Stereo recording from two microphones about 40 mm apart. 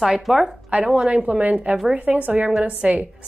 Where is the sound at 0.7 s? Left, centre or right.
Right.